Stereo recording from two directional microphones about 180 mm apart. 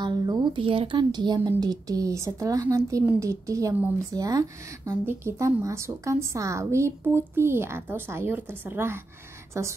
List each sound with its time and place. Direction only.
0.0 s a woman's voice: 25° right (ahead or behind)